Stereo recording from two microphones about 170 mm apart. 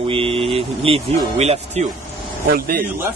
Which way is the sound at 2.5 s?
65° right (ahead or behind).